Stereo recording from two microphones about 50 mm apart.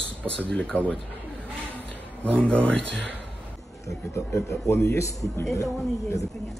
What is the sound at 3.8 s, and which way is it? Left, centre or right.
A man's voice, left.